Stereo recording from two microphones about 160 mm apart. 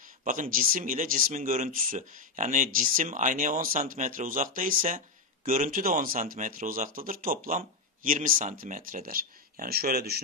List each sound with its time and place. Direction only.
0.2 s speech: 55° right (ahead or behind); by 10.2 s 75° right (ahead or behind)